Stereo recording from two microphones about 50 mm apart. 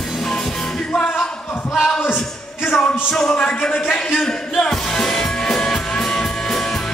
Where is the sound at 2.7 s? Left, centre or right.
Centre.